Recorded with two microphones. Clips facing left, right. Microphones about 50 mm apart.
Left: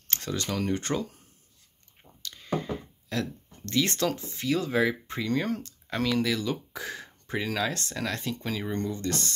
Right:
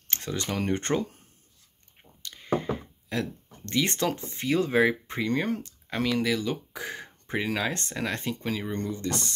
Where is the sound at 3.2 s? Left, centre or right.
Centre.